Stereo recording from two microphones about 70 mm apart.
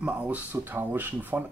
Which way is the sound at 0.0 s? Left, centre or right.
Centre.